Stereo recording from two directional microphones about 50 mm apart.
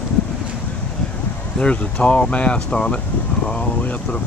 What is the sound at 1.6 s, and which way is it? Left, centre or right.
Speech, left.